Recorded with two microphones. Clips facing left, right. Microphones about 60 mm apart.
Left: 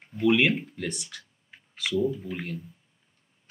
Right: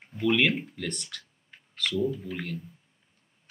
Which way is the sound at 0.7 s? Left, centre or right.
Centre.